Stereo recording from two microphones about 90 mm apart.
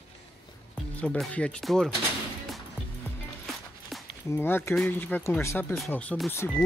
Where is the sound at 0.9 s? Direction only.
10° left (ahead or behind).